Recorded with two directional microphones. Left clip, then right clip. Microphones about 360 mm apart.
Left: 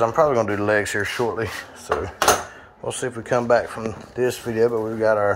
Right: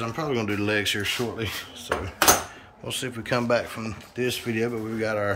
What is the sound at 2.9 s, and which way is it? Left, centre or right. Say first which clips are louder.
Speech: left 4 dB; centre.